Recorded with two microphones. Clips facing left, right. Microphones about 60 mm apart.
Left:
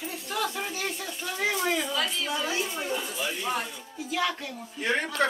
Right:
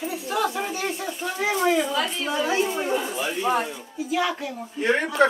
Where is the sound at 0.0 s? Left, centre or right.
Centre.